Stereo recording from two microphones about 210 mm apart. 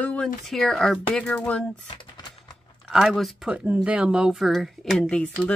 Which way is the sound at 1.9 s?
20° left (ahead or behind).